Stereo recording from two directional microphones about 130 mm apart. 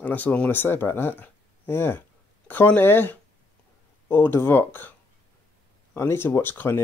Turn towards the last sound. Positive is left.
turn(degrees=15)  # may be behind; listen again after turning